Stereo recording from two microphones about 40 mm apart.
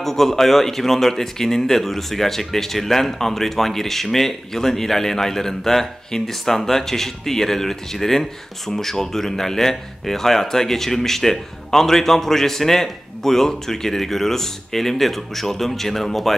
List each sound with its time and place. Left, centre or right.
0.0 s speech: centre